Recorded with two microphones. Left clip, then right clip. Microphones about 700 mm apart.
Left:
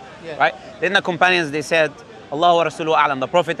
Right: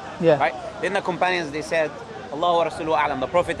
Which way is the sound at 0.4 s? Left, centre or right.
Left.